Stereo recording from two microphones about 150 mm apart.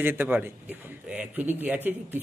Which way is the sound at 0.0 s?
15° right (ahead or behind).